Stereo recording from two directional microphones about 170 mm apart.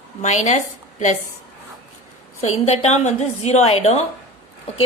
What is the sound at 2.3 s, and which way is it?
A woman's voice, 40° left (ahead or behind).